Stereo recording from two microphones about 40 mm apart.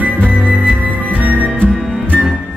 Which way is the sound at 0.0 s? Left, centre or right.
Right.